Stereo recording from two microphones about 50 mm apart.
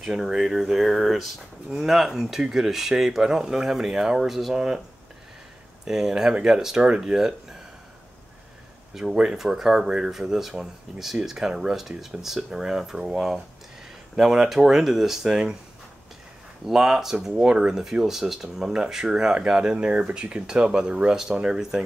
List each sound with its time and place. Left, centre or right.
0.0 s speech: centre
5.9 s speech: centre
9.1 s speech: centre
9.4 s speech: centre
16.6 s speech: centre